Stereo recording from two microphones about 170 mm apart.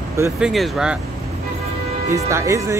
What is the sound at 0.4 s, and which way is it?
Speech, centre (ahead or behind).